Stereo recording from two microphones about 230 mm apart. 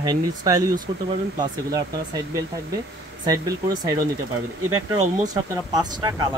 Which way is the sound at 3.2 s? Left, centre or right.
Centre.